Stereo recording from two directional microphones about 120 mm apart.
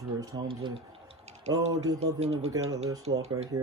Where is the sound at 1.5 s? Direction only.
30° right (ahead or behind).